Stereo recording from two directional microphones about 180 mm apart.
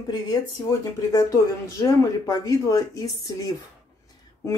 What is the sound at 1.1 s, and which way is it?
Speech, 20° left (ahead or behind).